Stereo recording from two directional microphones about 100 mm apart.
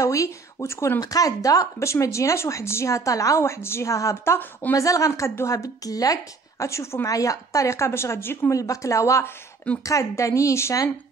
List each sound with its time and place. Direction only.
0.0 s speech: 35° left (ahead or behind)
4.7 s a woman's voice: 35° left (ahead or behind)